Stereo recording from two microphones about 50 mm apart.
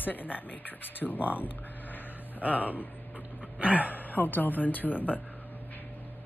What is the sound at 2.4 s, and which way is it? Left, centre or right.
Speech, right.